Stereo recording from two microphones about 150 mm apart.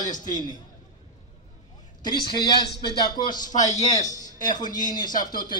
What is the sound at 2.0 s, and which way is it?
A man's voice, 30° left (ahead or behind).